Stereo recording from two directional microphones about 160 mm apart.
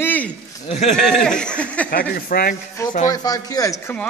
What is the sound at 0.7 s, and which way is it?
Speech, 45° left (ahead or behind).